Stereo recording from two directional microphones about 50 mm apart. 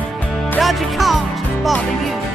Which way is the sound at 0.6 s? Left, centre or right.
Centre.